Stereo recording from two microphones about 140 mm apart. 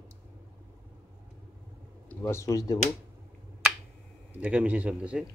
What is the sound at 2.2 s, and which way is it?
Speech, 20° left (ahead or behind).